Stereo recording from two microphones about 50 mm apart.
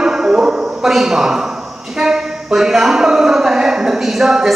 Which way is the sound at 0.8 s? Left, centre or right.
Centre.